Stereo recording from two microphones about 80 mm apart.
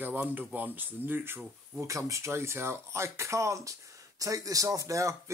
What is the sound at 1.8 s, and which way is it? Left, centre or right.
Speech, right.